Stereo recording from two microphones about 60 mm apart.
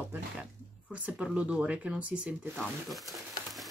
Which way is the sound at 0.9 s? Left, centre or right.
Right.